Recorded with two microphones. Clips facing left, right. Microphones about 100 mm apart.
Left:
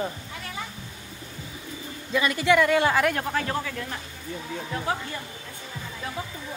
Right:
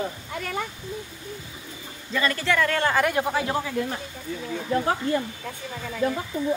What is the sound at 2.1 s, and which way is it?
Speech, 10° left (ahead or behind).